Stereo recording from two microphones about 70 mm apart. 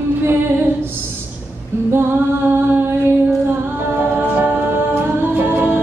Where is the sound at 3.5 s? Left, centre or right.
Right.